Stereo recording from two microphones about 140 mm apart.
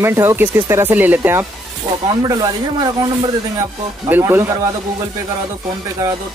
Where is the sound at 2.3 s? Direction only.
25° right (ahead or behind).